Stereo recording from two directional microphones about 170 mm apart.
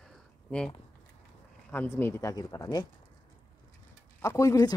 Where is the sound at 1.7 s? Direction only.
10° left (ahead or behind).